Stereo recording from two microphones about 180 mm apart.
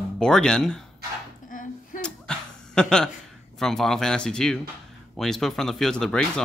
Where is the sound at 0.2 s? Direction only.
5° left (ahead or behind).